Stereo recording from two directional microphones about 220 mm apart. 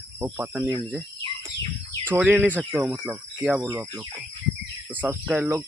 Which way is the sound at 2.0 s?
10° right (ahead or behind).